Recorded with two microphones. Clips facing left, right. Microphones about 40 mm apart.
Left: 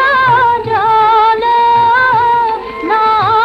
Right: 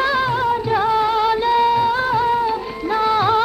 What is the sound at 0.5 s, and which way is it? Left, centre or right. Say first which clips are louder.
Music: left 7 dB; left.